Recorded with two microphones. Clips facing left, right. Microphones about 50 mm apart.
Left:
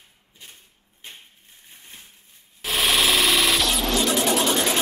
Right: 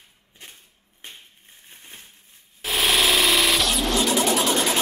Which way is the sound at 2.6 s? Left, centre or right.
Centre.